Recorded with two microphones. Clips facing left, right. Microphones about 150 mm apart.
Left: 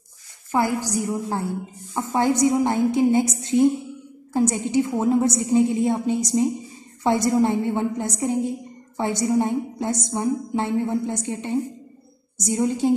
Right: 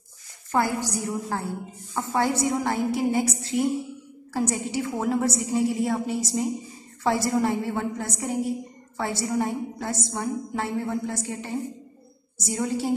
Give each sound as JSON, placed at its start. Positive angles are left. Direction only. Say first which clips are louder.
{"t": 0.5, "sound": "a woman's voice", "louder": "left 2 dB", "side_deg": 15}
{"t": 12.4, "sound": "a woman's voice", "louder": "left 5 dB", "side_deg": 20}